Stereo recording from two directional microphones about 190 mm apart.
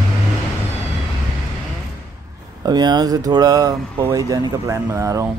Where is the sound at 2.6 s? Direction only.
20° right (ahead or behind).